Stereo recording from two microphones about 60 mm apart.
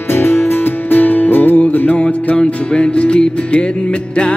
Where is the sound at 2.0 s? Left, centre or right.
Centre.